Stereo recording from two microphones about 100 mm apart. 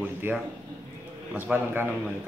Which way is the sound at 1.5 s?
10° right (ahead or behind).